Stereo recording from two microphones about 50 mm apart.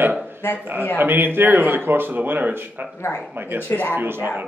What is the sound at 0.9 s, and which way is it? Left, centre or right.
Speech, right.